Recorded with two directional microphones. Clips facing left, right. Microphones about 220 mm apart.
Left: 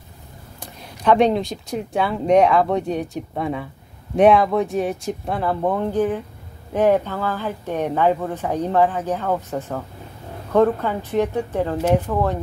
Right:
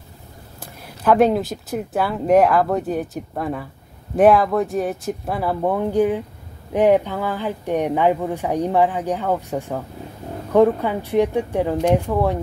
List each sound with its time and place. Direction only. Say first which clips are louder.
0.6 s speech: even; 5° right (ahead or behind)